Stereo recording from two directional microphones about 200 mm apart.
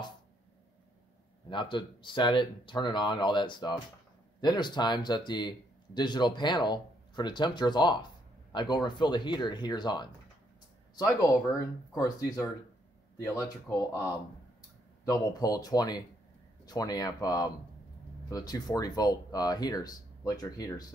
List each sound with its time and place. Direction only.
1.5 s speech: 25° left (ahead or behind)